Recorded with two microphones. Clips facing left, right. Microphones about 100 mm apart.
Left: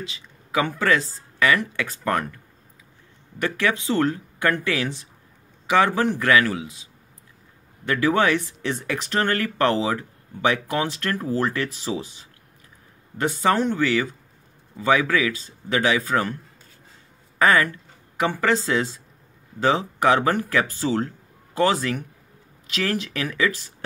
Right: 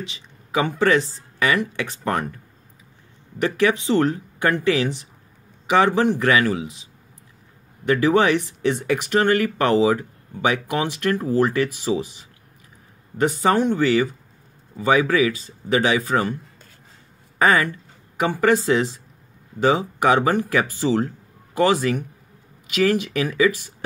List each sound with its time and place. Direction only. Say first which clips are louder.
0.6 s speech: right 3 dB; 20° right (ahead or behind)
3.3 s speech: right 4 dB; 20° right (ahead or behind)
7.8 s speech: right 3 dB; 20° right (ahead or behind)
8.6 s speech: right 6 dB; 10° right (ahead or behind)
13.4 s speech: right 1 dB; 15° right (ahead or behind)
17.4 s speech: right 1 dB; 20° right (ahead or behind)